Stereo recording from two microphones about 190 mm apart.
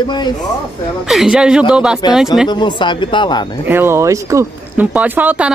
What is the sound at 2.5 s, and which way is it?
Speech, 25° left (ahead or behind).